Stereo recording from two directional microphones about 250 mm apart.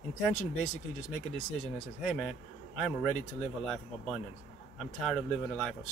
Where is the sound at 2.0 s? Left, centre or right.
Centre.